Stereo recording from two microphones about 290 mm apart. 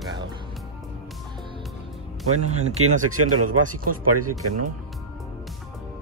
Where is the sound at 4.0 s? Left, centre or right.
Right.